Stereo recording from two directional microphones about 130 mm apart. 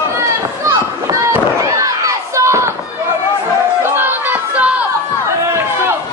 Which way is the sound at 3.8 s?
15° right (ahead or behind).